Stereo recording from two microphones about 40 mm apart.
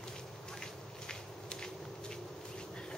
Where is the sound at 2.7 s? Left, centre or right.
Left.